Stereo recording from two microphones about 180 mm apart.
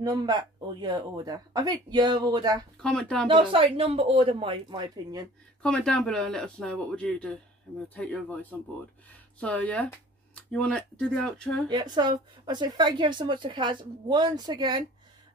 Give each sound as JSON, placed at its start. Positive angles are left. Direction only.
{"t": 0.0, "sound": "speech", "side_deg": -25}
{"t": 2.8, "sound": "speech", "side_deg": 5}
{"t": 3.3, "sound": "speech", "side_deg": -30}
{"t": 5.6, "sound": "speech", "side_deg": 5}
{"t": 11.7, "sound": "speech", "side_deg": -25}